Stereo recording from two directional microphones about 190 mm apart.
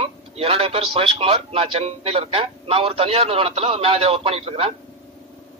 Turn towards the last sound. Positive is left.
turn(degrees=-30)  # may be behind; listen again after turning